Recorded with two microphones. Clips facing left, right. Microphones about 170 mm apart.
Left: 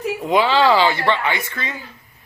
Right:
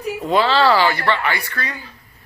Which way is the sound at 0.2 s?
15° left (ahead or behind).